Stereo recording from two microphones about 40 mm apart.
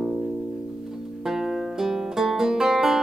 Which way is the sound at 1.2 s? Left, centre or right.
Centre.